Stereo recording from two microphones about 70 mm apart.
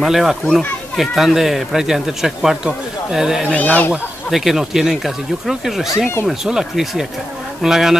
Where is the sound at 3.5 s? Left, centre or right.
Left.